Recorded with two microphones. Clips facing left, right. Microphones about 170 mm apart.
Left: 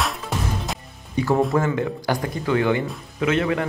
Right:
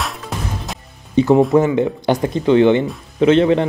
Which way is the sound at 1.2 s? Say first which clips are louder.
Right 8 dB; 20° right (ahead or behind).